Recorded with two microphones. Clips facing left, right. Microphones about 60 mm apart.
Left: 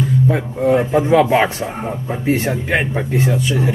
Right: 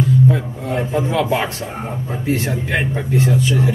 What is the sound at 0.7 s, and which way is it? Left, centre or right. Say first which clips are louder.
A man's voice: left 7 dB; centre.